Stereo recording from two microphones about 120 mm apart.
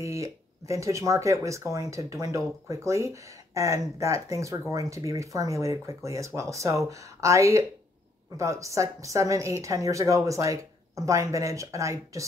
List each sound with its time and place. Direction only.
0.0 s speech: 25° right (ahead or behind)